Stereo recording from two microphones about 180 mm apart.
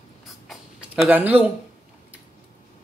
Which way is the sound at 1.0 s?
10° right (ahead or behind).